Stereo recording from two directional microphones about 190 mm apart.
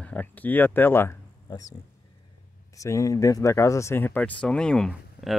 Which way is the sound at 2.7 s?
15° left (ahead or behind).